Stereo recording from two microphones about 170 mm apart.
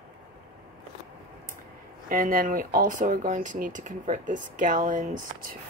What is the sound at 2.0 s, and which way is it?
Speech, 55° right (ahead or behind).